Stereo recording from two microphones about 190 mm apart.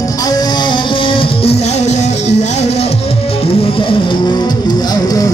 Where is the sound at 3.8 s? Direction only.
25° left (ahead or behind).